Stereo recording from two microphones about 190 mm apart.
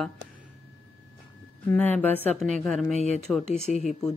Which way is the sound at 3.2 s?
5° left (ahead or behind).